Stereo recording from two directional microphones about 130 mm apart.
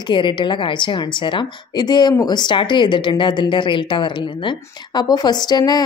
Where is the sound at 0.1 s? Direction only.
40° left (ahead or behind).